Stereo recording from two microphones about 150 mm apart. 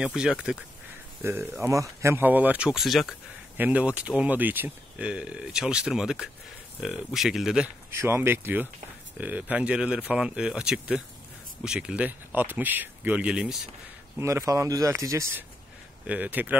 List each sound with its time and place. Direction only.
0.0 s speech: 5° right (ahead or behind)
7.9 s speech: 15° right (ahead or behind)
14.1 s speech: 20° right (ahead or behind)